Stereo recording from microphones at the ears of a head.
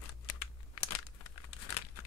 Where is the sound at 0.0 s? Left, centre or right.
Left.